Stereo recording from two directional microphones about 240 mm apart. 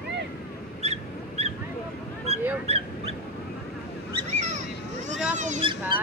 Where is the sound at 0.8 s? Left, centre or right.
Right.